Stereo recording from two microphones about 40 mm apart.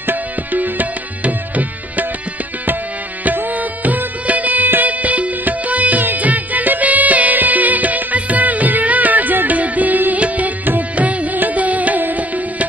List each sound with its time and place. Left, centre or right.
0.0 s music: right
3.3 s music: right